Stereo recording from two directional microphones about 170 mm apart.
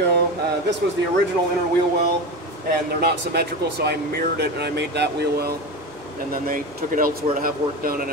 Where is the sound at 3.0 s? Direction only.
70° right (ahead or behind).